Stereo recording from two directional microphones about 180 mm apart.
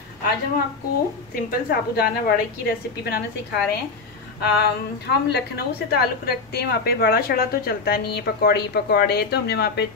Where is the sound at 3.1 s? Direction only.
60° left (ahead or behind).